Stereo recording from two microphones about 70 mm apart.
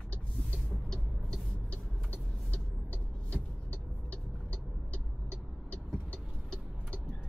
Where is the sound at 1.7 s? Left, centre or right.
Left.